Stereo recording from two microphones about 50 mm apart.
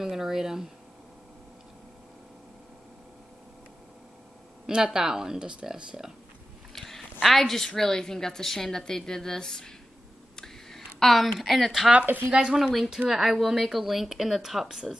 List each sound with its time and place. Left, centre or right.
0.0 s speech: centre
4.6 s speech: centre
6.7 s quack: centre
7.2 s a woman's voice: centre
10.3 s a sound: centre
12.3 s speech: centre
12.7 s speech: centre